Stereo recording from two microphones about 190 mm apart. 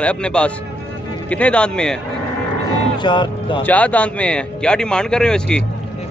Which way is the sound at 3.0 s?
25° left (ahead or behind).